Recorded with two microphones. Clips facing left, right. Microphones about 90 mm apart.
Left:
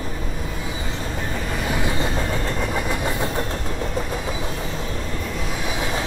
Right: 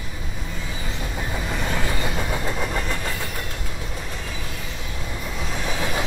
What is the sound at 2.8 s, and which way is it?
Train, 15° left (ahead or behind).